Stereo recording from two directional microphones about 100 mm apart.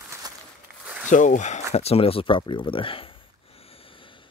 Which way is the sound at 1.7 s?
90° left.